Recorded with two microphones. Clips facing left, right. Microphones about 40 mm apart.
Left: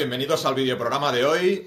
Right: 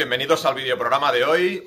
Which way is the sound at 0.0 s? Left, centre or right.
Right.